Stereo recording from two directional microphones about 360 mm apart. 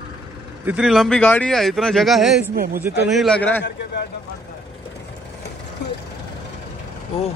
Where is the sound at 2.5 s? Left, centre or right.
Right.